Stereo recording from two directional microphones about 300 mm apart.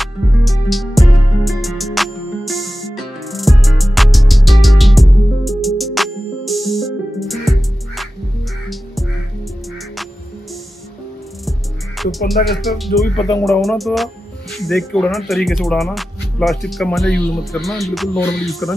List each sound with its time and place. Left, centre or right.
0.0 s music: centre
12.0 s music: centre
12.4 s speech: centre
13.1 s speech: centre
13.5 s speech: centre